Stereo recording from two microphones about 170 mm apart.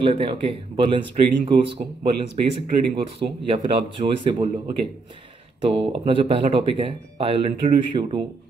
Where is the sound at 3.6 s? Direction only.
35° right (ahead or behind).